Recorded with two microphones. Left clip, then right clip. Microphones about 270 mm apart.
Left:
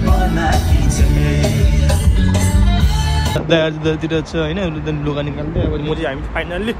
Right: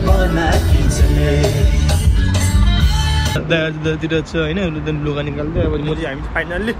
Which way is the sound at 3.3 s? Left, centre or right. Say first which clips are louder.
Left 4 dB; centre.